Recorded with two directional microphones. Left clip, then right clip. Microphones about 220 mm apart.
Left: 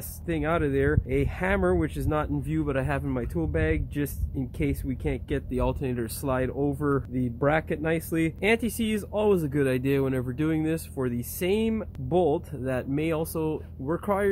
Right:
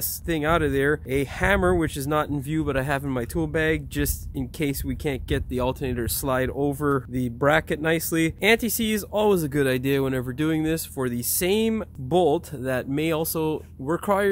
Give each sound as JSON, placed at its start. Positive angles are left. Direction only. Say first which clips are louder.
{"t": 0.3, "sound": "speech", "louder": "right 4 dB", "side_deg": -40}